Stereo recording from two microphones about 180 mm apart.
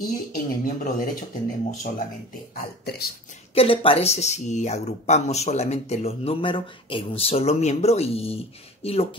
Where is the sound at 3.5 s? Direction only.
30° left (ahead or behind).